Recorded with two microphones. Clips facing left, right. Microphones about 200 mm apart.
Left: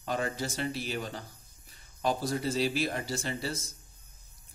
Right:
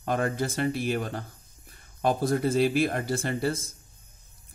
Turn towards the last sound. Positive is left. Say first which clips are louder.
# right 7 dB
turn(degrees=-55)  # may be behind; listen again after turning